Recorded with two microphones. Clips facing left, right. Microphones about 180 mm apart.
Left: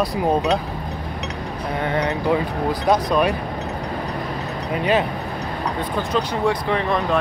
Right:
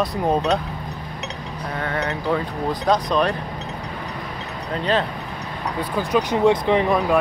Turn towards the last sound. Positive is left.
turn(degrees=-15)  # may be behind; listen again after turning